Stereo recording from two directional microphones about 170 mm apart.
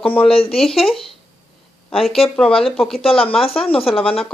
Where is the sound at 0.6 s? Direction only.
Centre (ahead or behind).